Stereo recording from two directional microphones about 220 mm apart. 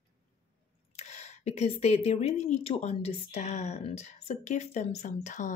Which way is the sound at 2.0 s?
30° left (ahead or behind).